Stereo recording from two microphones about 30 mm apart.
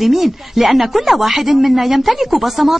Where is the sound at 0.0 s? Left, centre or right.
Centre.